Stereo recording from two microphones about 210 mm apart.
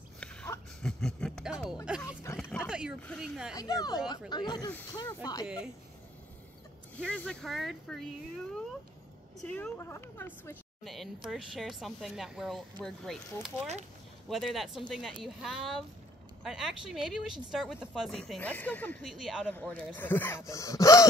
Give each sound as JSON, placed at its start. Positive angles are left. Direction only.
{"t": 0.2, "sound": "a sound", "side_deg": 5}
{"t": 1.9, "sound": "a woman's voice", "side_deg": -5}
{"t": 2.3, "sound": "oink", "side_deg": 0}
{"t": 3.0, "sound": "a woman's voice", "side_deg": 5}
{"t": 3.5, "sound": "speech", "side_deg": 15}
{"t": 7.0, "sound": "a woman's voice", "side_deg": 5}